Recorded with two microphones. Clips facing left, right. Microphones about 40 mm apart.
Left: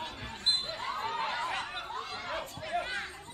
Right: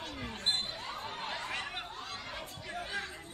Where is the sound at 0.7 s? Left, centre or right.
Left.